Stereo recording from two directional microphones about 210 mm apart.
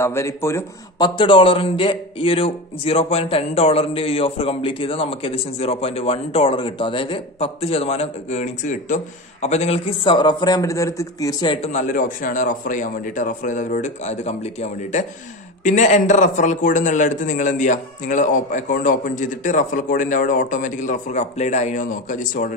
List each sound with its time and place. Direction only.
0.0 s a man's voice: 15° left (ahead or behind)
11.7 s a man's voice: 35° left (ahead or behind)